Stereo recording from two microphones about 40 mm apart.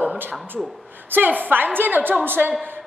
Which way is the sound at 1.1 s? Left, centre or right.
Right.